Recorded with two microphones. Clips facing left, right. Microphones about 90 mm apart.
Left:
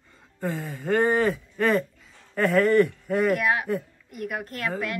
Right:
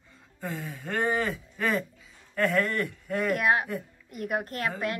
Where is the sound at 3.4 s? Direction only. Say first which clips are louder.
Left 1 dB; 30° right (ahead or behind).